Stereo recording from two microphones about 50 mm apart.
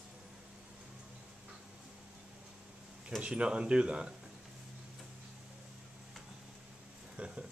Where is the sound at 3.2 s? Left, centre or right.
Right.